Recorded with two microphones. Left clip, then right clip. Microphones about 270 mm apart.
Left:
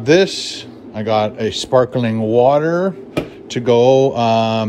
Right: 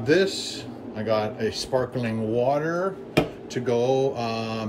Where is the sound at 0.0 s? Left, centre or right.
Centre.